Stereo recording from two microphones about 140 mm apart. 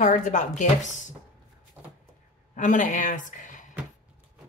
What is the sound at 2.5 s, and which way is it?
A woman's voice, 65° left (ahead or behind).